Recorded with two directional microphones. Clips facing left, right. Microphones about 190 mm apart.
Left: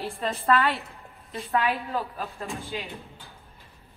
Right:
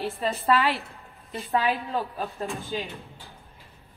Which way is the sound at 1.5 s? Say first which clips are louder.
Right 1 dB; 30° right (ahead or behind).